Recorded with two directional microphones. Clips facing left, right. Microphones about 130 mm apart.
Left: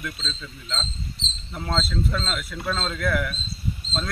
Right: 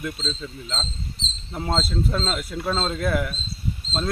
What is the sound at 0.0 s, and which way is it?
Speech, 30° right (ahead or behind).